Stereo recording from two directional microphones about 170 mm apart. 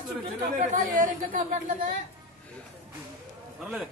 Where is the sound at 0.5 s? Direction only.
50° right (ahead or behind).